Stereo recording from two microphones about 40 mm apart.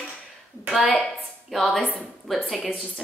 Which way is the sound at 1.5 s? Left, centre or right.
Centre.